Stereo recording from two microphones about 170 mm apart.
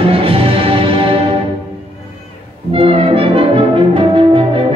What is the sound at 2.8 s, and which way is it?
Music, 35° right (ahead or behind).